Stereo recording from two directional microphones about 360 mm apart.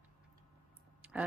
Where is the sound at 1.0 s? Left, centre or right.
Centre.